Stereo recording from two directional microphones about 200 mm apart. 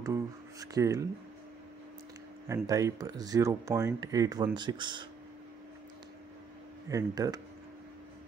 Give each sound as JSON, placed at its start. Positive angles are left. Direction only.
{"t": 0.0, "sound": "speech", "side_deg": -15}
{"t": 2.4, "sound": "speech", "side_deg": -15}
{"t": 6.9, "sound": "speech", "side_deg": -15}